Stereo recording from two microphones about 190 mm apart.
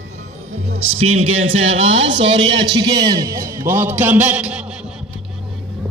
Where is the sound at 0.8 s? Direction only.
90° right.